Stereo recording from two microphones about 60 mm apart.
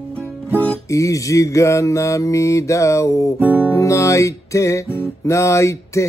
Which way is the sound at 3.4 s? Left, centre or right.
Right.